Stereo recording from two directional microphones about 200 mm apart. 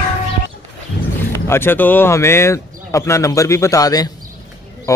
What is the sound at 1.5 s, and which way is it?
Speech, 10° left (ahead or behind).